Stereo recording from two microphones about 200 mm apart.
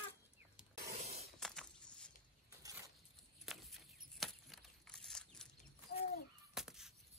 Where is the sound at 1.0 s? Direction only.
30° right (ahead or behind).